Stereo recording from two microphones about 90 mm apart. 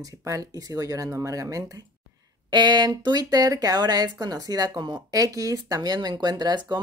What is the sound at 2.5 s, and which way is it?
Speech, 55° right (ahead or behind).